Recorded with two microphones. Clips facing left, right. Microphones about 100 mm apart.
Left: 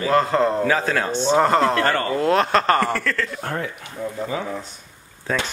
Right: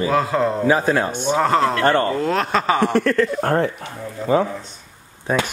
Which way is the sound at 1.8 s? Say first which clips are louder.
Right 4 dB; 30° right (ahead or behind).